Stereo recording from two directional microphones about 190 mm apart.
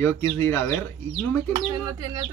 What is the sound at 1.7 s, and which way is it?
Speech, 20° right (ahead or behind).